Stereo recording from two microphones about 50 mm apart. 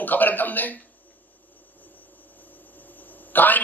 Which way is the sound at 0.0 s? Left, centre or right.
Left.